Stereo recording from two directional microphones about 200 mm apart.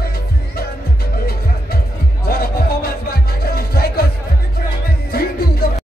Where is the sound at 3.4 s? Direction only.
50° left (ahead or behind).